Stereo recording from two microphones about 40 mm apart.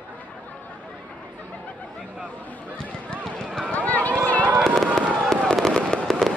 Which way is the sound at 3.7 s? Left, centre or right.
Left.